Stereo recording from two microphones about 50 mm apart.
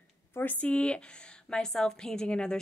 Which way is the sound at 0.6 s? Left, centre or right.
Left.